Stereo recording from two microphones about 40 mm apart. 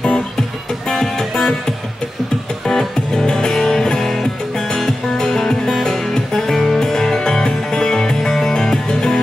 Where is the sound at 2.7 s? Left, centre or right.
Centre.